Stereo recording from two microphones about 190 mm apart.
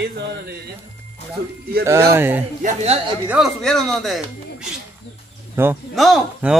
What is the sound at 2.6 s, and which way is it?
Speech, 35° right (ahead or behind).